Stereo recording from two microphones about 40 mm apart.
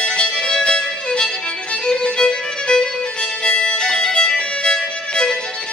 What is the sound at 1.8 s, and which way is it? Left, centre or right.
Violin, left.